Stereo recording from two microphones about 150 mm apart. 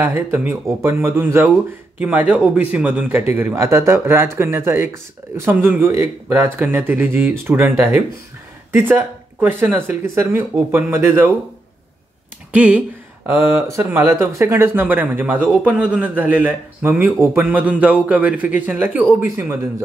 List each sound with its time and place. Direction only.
0.0 s a man's voice: 15° right (ahead or behind)
12.5 s a man's voice: 10° right (ahead or behind)